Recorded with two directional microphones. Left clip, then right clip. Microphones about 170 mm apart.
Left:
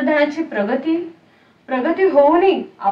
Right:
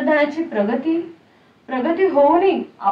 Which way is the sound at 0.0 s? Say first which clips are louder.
Left 1 dB; 15° left (ahead or behind).